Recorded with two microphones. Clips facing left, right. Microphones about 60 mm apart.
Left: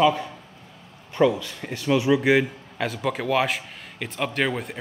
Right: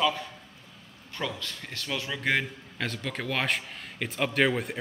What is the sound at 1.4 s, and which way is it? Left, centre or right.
A man's voice, centre.